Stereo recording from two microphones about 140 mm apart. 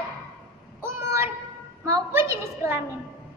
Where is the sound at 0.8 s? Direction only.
20° right (ahead or behind).